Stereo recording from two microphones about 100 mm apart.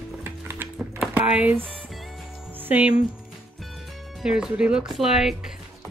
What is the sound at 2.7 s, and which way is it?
Speech, 10° right (ahead or behind).